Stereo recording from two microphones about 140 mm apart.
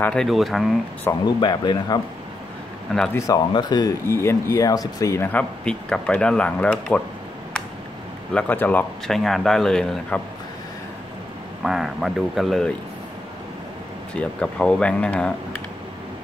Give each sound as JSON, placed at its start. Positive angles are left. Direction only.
{"t": 0.0, "sound": "speech", "side_deg": 5}
{"t": 1.2, "sound": "speech", "side_deg": 30}
{"t": 3.1, "sound": "speech", "side_deg": 20}
{"t": 4.1, "sound": "speech", "side_deg": 20}
{"t": 8.3, "sound": "speech", "side_deg": 10}
{"t": 11.6, "sound": "speech", "side_deg": 0}
{"t": 14.1, "sound": "speech", "side_deg": 10}